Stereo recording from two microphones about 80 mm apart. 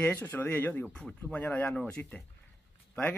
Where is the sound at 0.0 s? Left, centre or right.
Centre.